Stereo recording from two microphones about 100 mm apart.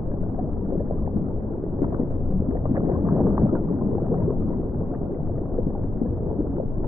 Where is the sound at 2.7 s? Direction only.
30° right (ahead or behind).